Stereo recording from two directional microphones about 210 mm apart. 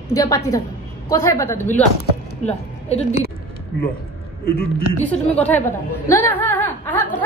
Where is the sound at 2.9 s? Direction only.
30° left (ahead or behind).